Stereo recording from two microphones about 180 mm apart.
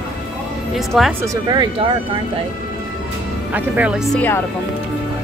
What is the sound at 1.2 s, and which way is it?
Speech, 25° right (ahead or behind).